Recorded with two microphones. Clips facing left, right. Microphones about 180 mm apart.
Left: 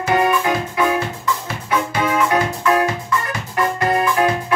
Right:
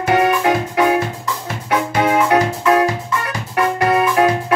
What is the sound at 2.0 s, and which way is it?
Music, 70° right (ahead or behind).